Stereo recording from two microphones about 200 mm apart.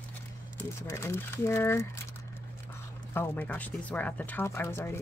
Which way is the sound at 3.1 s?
10° left (ahead or behind).